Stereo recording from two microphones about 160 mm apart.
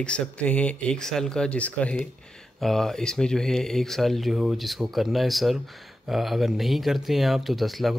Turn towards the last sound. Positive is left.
turn(degrees=0)  # may be behind; listen again after turning